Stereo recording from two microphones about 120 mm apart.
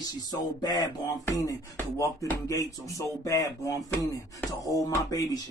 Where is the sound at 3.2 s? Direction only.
25° left (ahead or behind).